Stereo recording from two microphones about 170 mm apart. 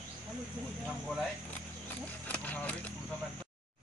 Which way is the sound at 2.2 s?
10° left (ahead or behind).